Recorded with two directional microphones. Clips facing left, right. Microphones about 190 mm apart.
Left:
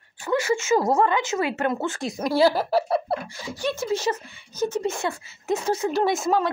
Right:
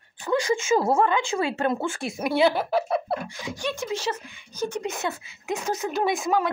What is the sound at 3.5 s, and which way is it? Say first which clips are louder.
Speech: left 4 dB; 5° left (ahead or behind).